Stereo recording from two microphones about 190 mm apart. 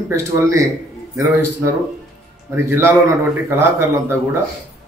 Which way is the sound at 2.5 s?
10° right (ahead or behind).